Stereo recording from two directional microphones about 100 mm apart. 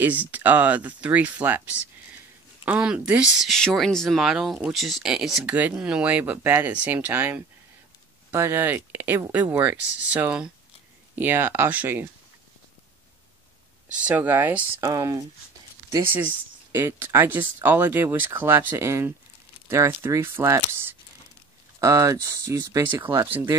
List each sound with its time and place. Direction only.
0.0 s speech: 15° right (ahead or behind)
2.6 s speech: 15° right (ahead or behind)
13.9 s speech: 15° right (ahead or behind)
14.8 s speech: 35° right (ahead or behind)
16.0 s speech: 20° right (ahead or behind)
21.7 s speech: 35° right (ahead or behind)